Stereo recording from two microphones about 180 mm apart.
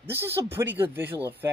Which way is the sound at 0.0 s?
10° right (ahead or behind).